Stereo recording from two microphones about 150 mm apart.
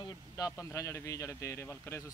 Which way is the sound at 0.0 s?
25° left (ahead or behind).